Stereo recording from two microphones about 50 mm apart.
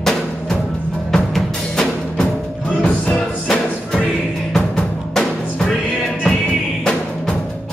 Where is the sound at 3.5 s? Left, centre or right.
Centre.